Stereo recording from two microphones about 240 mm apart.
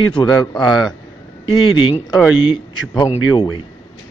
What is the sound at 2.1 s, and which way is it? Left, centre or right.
Speech, centre.